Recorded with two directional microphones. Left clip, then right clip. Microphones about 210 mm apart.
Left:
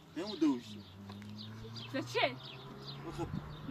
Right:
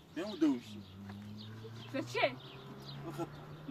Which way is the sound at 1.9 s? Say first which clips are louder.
Even; 50° left (ahead or behind).